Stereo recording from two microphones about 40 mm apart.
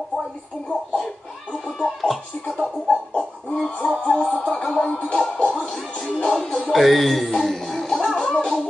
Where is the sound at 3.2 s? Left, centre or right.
Centre.